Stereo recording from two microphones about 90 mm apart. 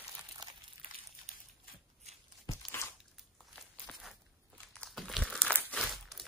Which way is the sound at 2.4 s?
30° left (ahead or behind).